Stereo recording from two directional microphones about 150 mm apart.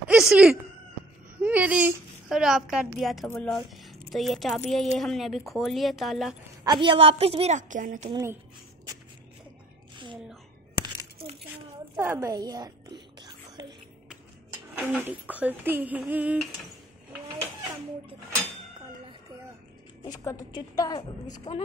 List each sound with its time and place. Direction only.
0.1 s a child's voice: 5° right (ahead or behind)
6.6 s a woman's voice: 30° right (ahead or behind)
7.5 s a woman's voice: 60° right (ahead or behind)
8.1 s speech: 20° right (ahead or behind)
12.0 s whispering: 15° right (ahead or behind)
14.8 s speech: 10° right (ahead or behind)
20.1 s a woman's voice: 25° left (ahead or behind)